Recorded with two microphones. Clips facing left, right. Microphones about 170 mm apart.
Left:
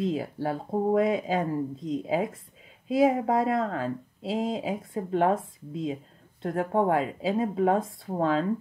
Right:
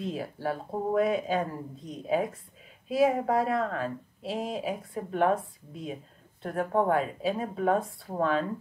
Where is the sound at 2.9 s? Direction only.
20° left (ahead or behind).